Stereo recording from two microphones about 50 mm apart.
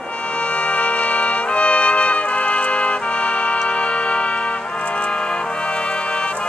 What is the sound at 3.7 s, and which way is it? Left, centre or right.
Music, left.